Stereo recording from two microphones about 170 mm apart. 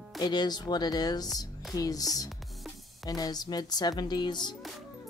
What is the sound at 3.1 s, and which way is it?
Speech, 20° left (ahead or behind).